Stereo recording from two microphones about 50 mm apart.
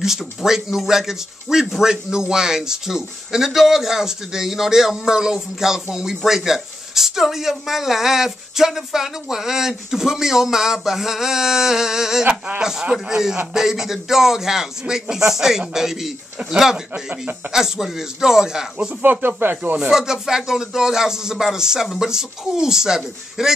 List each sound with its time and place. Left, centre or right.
0.0 s speech: centre
12.3 s speech: right
12.9 s speech: centre
16.9 s speech: right
17.5 s speech: centre
19.0 s speech: right
19.8 s speech: centre